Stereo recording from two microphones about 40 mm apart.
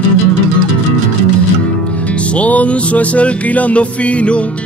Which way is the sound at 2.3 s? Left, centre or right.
Left.